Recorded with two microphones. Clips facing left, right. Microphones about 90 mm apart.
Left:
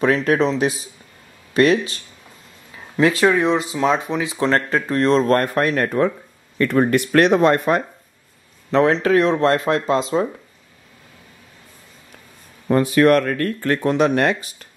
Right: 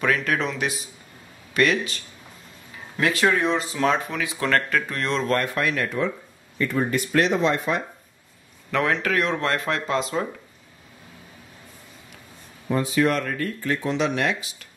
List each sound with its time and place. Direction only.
0.0 s speech: 30° left (ahead or behind)
3.0 s speech: 25° left (ahead or behind); by 6.1 s 50° left (ahead or behind)
6.6 s speech: 65° left (ahead or behind)
8.7 s speech: 30° left (ahead or behind)
12.6 s speech: 65° left (ahead or behind); by 14.7 s 45° left (ahead or behind)